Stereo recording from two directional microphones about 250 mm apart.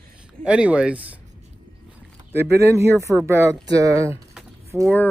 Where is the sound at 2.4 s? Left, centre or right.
Centre.